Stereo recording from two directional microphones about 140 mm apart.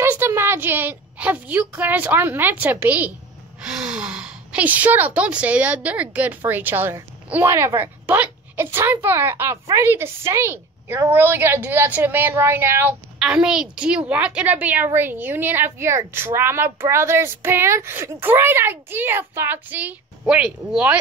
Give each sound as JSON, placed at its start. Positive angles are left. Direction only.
{"t": 0.0, "sound": "a woman's voice", "side_deg": -15}
{"t": 13.2, "sound": "a woman's voice", "side_deg": -5}